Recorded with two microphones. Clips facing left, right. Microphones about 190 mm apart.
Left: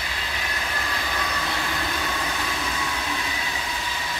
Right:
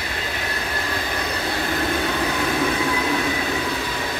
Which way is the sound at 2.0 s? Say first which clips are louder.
Right 7 dB; 60° right (ahead or behind).